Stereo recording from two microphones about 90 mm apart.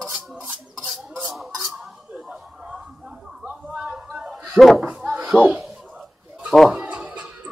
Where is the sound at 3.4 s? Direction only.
5° right (ahead or behind).